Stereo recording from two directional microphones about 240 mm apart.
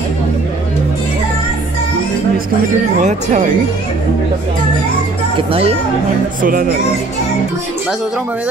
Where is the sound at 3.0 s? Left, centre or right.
Right.